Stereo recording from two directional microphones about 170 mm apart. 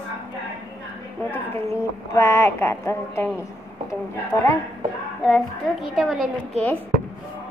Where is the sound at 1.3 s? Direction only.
15° left (ahead or behind).